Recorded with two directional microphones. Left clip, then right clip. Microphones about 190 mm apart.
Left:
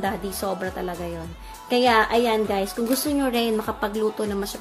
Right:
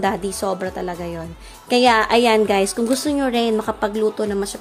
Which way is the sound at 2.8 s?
25° right (ahead or behind).